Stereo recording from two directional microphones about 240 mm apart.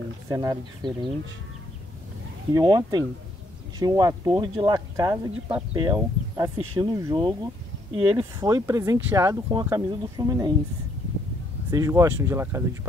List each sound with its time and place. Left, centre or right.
0.3 s speech: centre
2.5 s speech: centre
11.7 s speech: centre